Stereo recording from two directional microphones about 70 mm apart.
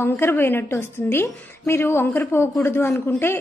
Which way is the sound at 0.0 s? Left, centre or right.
Left.